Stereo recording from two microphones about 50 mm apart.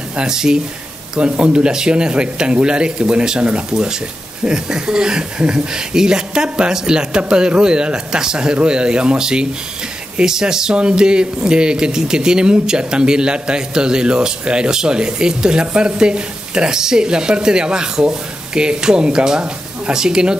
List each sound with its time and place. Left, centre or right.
0.1 s speech: centre